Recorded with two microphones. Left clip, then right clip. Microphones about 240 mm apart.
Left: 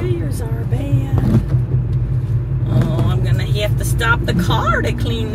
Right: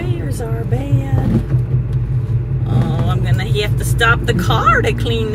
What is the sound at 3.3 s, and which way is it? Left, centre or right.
Speech, right.